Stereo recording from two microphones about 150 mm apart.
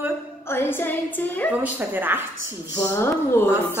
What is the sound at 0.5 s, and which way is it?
A woman's voice, 15° left (ahead or behind).